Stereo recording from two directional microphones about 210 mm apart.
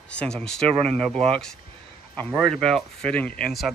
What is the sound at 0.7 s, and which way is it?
Speech, 25° right (ahead or behind).